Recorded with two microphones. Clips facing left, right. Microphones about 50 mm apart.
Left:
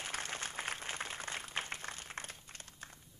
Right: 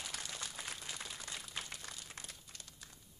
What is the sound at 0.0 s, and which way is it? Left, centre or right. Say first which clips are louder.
Applause: left 5 dB; left.